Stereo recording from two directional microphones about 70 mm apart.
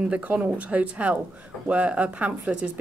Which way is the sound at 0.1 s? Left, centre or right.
Right.